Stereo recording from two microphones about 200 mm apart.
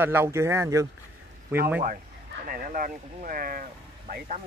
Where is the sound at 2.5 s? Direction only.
45° right (ahead or behind).